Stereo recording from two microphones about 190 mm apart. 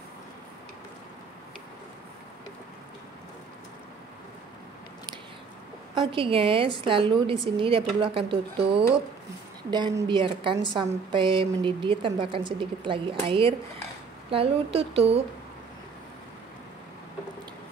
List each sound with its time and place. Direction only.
6.1 s a woman's voice: 30° right (ahead or behind)